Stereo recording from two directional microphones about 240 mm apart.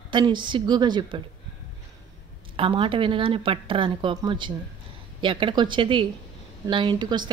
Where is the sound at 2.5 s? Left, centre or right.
Right.